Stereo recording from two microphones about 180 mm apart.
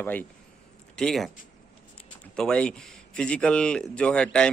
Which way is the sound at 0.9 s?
Centre (ahead or behind).